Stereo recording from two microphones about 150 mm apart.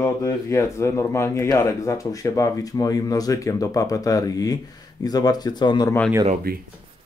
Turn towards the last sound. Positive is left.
turn(degrees=-90)